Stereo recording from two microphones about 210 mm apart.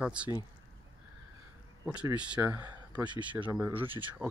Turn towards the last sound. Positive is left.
turn(degrees=-10)  # may be behind; listen again after turning